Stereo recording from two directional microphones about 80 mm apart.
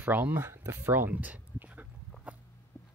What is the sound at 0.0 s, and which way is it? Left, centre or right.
Speech, right.